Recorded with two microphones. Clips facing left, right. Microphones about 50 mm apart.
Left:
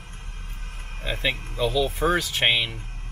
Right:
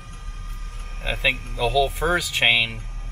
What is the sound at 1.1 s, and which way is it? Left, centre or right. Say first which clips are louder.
Speech: right 3 dB; centre.